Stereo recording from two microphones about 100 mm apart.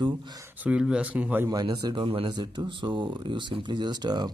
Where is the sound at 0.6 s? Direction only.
10° right (ahead or behind).